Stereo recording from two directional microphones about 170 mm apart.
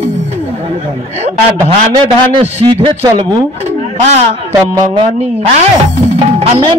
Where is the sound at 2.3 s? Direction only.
30° right (ahead or behind).